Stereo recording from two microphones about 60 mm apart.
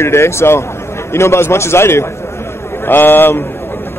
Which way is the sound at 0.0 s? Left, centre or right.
Left.